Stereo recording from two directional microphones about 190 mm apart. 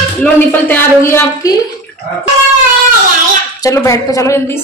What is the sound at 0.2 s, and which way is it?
A woman's voice, 10° left (ahead or behind).